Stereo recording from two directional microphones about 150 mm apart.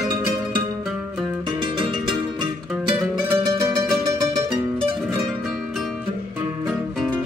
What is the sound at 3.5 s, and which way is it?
Music, 25° right (ahead or behind).